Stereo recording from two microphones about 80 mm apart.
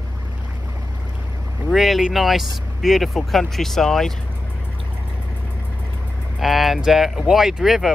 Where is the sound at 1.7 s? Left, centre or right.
Centre.